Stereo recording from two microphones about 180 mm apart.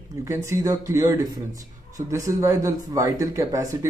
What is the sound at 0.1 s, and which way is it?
Speech, 15° right (ahead or behind).